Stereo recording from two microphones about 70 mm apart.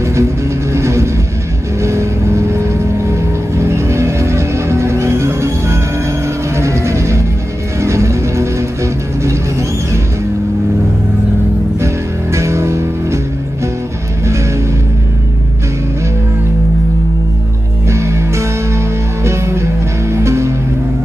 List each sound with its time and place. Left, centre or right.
0.0 s vehicle: right
0.7 s music: right
1.8 s vehicle: right
6.2 s music: right
11.8 s music: right
14.2 s music: right
17.8 s music: right